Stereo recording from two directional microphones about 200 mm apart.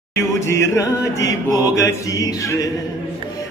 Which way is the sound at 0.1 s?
15° left (ahead or behind).